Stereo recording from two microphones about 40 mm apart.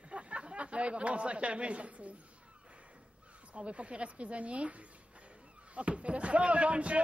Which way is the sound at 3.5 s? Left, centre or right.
Right.